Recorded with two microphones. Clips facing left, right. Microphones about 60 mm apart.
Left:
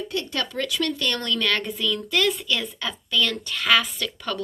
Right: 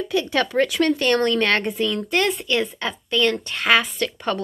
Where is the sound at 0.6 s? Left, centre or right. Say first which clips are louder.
Right 7 dB; right.